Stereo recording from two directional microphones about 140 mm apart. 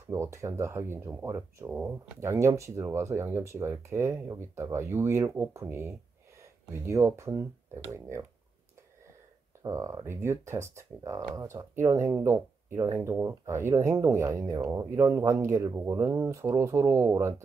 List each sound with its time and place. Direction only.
0.1 s speech: 20° right (ahead or behind)
9.6 s speech: 20° right (ahead or behind)